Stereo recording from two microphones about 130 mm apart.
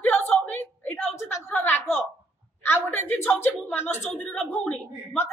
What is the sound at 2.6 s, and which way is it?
A woman's voice, 15° left (ahead or behind).